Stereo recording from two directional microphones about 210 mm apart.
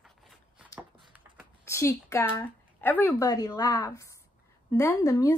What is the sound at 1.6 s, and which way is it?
Speech, 10° left (ahead or behind).